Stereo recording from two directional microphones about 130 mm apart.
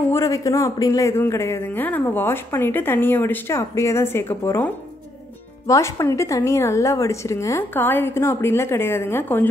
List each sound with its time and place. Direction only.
0.1 s a woman's voice: 25° left (ahead or behind)